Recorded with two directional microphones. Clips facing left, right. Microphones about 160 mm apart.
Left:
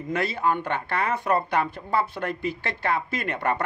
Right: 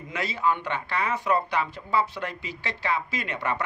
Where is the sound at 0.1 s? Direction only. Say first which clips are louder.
Left 2 dB; 55° left (ahead or behind).